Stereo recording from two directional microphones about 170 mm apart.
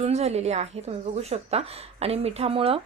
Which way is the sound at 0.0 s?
40° right (ahead or behind).